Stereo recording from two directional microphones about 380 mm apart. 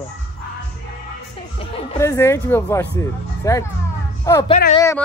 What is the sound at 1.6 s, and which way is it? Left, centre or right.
Speech, centre.